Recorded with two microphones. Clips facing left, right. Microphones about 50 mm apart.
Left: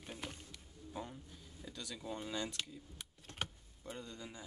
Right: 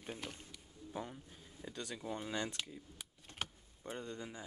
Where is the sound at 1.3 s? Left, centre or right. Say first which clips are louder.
Right 2 dB; right.